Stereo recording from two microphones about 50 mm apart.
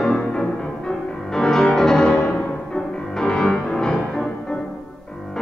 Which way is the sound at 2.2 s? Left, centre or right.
Left.